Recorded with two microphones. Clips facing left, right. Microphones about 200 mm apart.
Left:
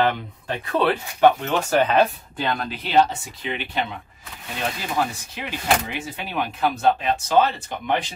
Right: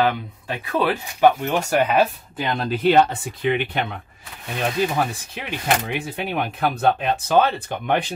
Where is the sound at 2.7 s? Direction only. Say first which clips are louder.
Right 4 dB; 50° right (ahead or behind).